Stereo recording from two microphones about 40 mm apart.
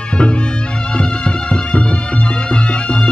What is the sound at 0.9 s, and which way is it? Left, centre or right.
Music, left.